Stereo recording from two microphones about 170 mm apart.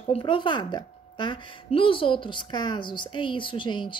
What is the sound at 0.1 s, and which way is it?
A woman's voice, 30° left (ahead or behind).